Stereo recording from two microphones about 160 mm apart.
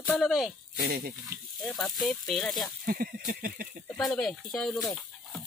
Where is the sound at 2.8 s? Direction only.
60° right (ahead or behind).